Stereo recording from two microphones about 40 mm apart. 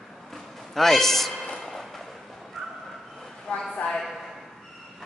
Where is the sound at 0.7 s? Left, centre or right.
Centre.